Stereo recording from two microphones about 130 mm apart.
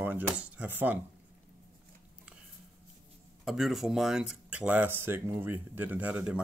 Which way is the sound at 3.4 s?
Centre (ahead or behind).